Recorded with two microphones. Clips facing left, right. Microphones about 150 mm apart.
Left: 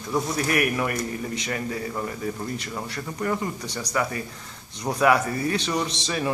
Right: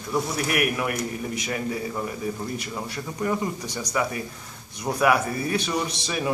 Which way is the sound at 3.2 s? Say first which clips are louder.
Right 1 dB; 10° right (ahead or behind).